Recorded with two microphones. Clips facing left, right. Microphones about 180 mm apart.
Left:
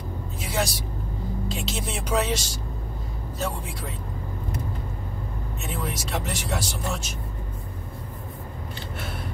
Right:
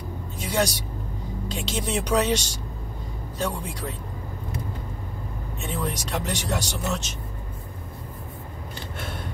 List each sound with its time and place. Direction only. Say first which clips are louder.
0.4 s vehicle: right 3 dB; 5° left (ahead or behind)
1.5 s speech: right 8 dB; 5° left (ahead or behind)
5.6 s speech: right 3 dB; 5° left (ahead or behind)